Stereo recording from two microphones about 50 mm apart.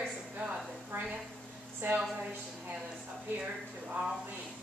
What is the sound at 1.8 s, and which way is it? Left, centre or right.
Speech, right.